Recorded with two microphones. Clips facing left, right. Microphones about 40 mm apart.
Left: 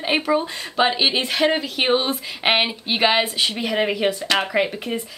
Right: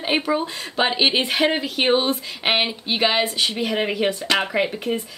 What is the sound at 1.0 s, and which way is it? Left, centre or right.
Speech, centre.